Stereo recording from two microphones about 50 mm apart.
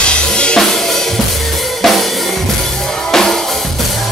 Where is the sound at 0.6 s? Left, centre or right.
Centre.